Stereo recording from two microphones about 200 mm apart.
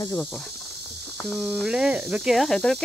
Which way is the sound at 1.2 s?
Centre (ahead or behind).